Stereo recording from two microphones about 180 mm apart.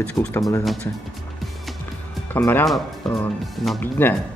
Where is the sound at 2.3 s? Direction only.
10° left (ahead or behind).